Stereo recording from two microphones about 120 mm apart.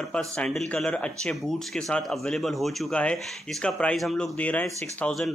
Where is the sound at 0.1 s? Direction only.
5° left (ahead or behind).